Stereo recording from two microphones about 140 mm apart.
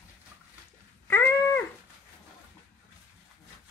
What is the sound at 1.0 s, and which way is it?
Cat, 15° left (ahead or behind).